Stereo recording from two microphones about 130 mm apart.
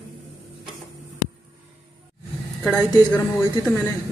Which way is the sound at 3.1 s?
15° left (ahead or behind).